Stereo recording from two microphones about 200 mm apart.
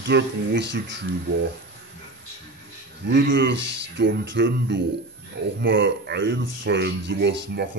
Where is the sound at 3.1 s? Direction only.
65° right (ahead or behind).